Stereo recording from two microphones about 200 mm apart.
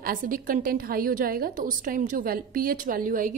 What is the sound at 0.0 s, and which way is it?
A woman's voice, 45° right (ahead or behind).